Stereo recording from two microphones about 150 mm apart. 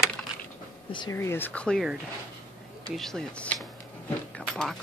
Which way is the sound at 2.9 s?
5° left (ahead or behind).